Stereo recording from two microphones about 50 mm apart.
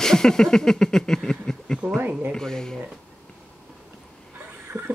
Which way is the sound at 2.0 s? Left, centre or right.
Right.